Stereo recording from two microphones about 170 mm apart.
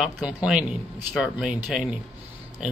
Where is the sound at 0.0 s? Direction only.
5° right (ahead or behind).